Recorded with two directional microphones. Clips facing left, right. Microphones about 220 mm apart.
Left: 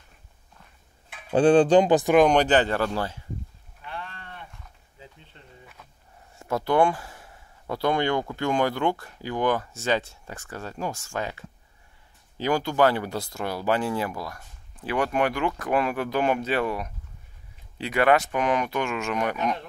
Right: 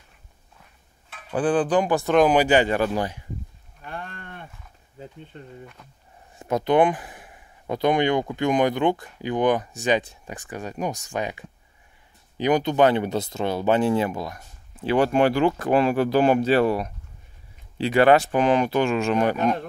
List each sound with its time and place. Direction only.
1.3 s speech: 25° left (ahead or behind)
2.1 s speech: 5° right (ahead or behind)
3.8 s cattle: 50° right (ahead or behind)
4.9 s speech: 50° right (ahead or behind)
6.3 s speech: 20° right (ahead or behind)